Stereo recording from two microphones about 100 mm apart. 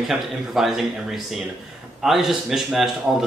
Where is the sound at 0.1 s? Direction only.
Centre (ahead or behind).